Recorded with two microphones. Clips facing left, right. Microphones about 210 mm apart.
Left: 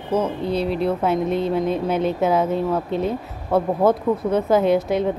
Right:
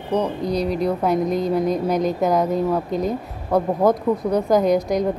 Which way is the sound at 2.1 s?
5° left (ahead or behind).